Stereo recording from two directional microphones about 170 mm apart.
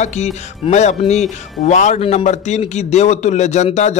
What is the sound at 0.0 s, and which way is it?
Speech, 40° left (ahead or behind).